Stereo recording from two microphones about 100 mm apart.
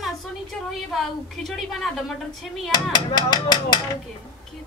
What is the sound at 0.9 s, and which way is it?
Speech, centre (ahead or behind).